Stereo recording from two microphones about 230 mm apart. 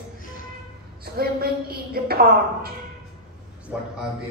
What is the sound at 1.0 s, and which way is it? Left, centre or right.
A woman's voice, right.